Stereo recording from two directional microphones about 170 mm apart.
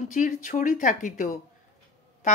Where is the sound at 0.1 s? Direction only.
45° left (ahead or behind).